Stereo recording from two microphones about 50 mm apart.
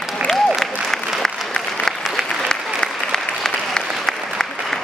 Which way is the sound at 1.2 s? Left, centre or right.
Centre.